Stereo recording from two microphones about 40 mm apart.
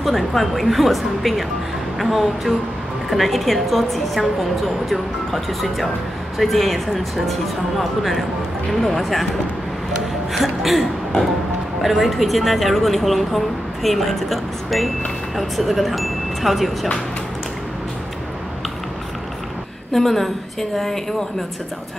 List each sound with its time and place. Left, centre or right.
0.0 s speech: centre
10.3 s music: centre
11.8 s speech: centre
19.9 s a woman's voice: centre